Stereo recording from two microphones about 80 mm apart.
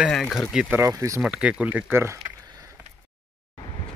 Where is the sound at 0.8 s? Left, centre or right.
Right.